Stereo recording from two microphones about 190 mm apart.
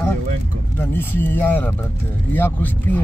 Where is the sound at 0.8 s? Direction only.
10° left (ahead or behind).